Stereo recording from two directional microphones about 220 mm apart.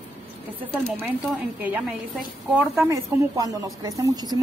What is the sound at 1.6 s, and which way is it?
A woman's voice, 5° right (ahead or behind).